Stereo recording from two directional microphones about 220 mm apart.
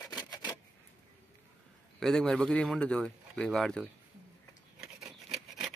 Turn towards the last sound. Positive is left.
turn(degrees=0)  # may be behind; listen again after turning